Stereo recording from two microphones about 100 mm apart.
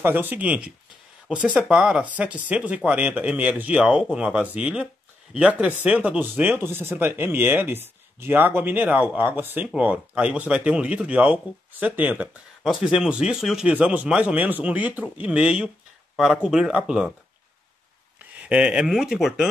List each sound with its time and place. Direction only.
0.0 s speech: 20° right (ahead or behind)
12.6 s speech: 5° right (ahead or behind)
18.4 s speech: 10° right (ahead or behind)